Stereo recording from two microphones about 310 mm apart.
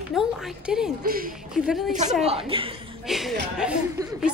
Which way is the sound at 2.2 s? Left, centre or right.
Centre.